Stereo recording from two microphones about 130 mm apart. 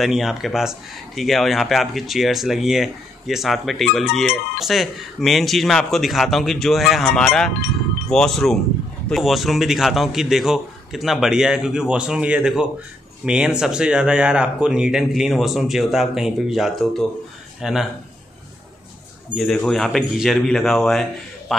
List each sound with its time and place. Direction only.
0.0 s speech: centre (ahead or behind)
19.3 s speech: centre (ahead or behind)